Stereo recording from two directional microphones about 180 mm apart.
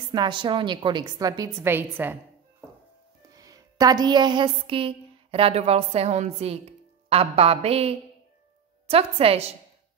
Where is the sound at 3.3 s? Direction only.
20° right (ahead or behind).